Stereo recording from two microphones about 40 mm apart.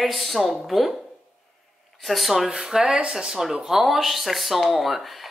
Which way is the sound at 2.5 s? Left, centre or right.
Centre.